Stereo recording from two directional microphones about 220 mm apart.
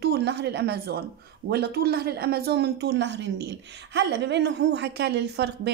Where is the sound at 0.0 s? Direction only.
50° right (ahead or behind).